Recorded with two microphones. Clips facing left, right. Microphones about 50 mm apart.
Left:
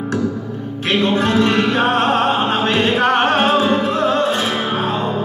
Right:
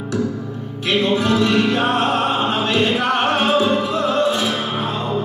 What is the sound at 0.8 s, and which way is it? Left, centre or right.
Music, left.